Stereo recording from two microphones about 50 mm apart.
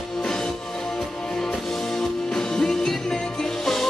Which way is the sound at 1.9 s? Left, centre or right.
Centre.